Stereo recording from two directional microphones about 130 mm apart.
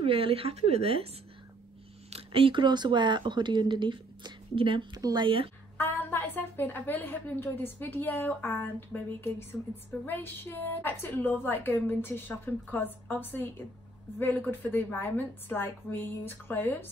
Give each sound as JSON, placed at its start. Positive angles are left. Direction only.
{"t": 0.0, "sound": "speech", "side_deg": -45}
{"t": 2.0, "sound": "speech", "side_deg": -50}
{"t": 5.8, "sound": "a woman's voice", "side_deg": 15}